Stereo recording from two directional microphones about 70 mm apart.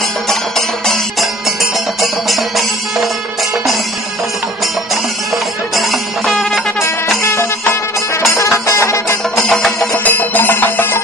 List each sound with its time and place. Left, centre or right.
0.3 s music: centre
5.8 s music: centre
8.3 s music: left
9.5 s music: centre
10.0 s music: left